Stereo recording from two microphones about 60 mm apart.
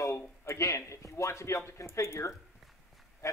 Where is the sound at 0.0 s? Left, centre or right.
Left.